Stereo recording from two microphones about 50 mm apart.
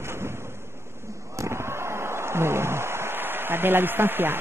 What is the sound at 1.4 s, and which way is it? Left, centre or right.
Speech, right.